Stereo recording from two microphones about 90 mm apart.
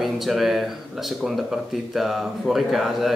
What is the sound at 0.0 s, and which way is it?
Speech, centre (ahead or behind).